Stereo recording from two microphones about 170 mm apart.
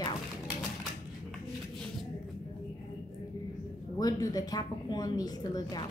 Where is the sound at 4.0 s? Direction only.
20° left (ahead or behind).